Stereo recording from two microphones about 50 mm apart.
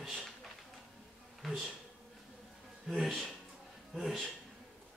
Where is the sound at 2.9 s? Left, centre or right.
Centre.